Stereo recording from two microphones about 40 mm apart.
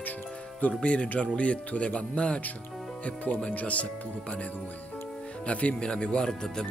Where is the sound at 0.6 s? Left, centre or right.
Left.